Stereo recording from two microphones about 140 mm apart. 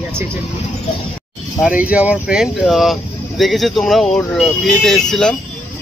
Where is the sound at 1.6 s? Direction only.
10° right (ahead or behind).